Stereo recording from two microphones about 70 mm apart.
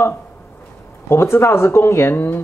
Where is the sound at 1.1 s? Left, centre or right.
Left.